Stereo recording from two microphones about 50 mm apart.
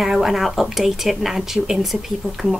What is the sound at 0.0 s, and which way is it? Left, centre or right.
Speech, centre.